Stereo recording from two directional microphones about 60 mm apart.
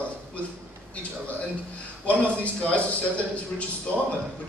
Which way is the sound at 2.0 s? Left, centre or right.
Left.